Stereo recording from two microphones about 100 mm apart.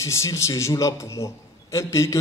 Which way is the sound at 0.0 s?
30° left (ahead or behind).